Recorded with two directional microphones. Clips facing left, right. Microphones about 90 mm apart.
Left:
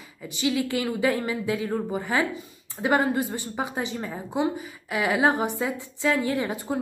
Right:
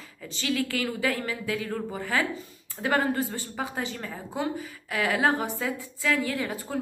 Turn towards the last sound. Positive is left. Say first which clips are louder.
# left 4 dB
turn(degrees=20)  # may be behind; listen again after turning